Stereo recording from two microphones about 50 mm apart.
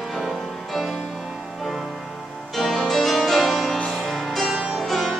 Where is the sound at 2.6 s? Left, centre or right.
Centre.